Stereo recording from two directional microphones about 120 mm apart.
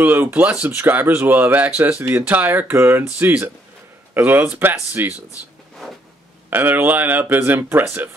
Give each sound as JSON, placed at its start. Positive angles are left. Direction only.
{"t": 0.0, "sound": "speech", "side_deg": -15}
{"t": 6.5, "sound": "speech", "side_deg": -15}